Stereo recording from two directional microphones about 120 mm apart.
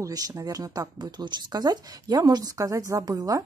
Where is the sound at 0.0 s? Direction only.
30° right (ahead or behind).